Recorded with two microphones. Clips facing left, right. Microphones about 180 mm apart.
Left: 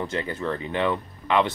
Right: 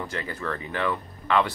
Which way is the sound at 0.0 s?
20° left (ahead or behind).